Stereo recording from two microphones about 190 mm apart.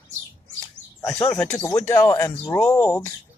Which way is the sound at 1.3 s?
5° left (ahead or behind).